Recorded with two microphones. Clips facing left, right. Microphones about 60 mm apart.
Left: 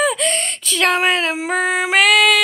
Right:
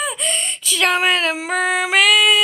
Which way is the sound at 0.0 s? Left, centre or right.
Left.